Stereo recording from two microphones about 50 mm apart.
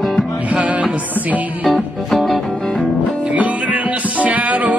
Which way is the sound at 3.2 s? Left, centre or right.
Right.